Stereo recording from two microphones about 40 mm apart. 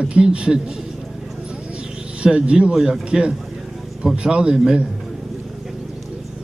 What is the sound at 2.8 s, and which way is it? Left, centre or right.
A man's voice, centre.